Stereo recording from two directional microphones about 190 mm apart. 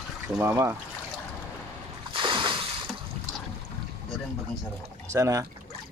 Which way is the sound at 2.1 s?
25° right (ahead or behind).